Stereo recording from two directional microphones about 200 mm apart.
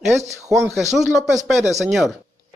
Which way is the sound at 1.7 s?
Centre (ahead or behind).